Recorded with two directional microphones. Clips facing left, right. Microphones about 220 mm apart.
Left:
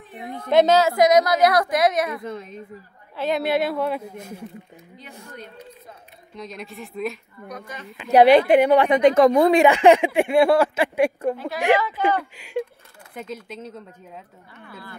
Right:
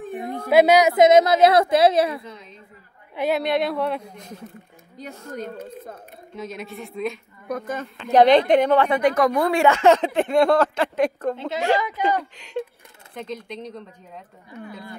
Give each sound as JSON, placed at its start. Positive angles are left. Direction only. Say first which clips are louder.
{"t": 0.0, "sound": "a sound", "louder": "right 6 dB", "side_deg": -45}
{"t": 0.5, "sound": "a woman's voice", "louder": "right 1 dB", "side_deg": -10}
{"t": 2.2, "sound": "a woman's voice", "louder": "left 8 dB", "side_deg": 50}
{"t": 3.2, "sound": "speech", "louder": "even", "side_deg": -5}
{"t": 5.3, "sound": "speech", "louder": "right 11 dB", "side_deg": -45}
{"t": 6.3, "sound": "speech", "louder": "right 2 dB", "side_deg": 0}
{"t": 7.4, "sound": "speech", "louder": "right 8 dB", "side_deg": -50}
{"t": 8.0, "sound": "speech", "louder": "left 1 dB", "side_deg": 10}
{"t": 11.3, "sound": "a woman's voice", "louder": "right 2 dB", "side_deg": -20}
{"t": 12.2, "sound": "speech", "louder": "left 2 dB", "side_deg": 10}
{"t": 14.5, "sound": "speech", "louder": "right 6 dB", "side_deg": -15}